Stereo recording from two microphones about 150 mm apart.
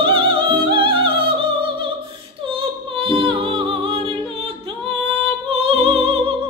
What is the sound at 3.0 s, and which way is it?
Music, 35° right (ahead or behind).